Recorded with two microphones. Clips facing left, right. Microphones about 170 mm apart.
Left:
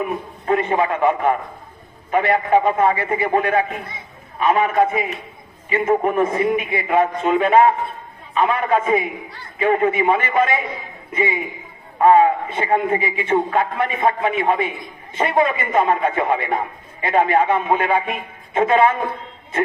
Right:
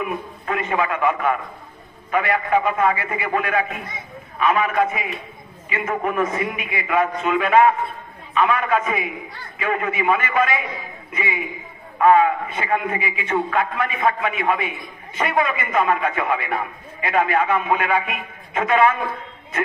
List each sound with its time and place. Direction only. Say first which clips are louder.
0.0 s a man's voice: left 2 dB; 30° left (ahead or behind)